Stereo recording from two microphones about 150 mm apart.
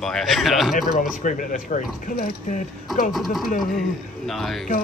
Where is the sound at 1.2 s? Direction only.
55° left (ahead or behind).